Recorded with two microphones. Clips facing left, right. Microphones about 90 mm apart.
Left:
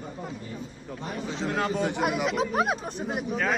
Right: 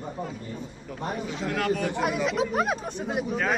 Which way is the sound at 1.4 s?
25° left (ahead or behind).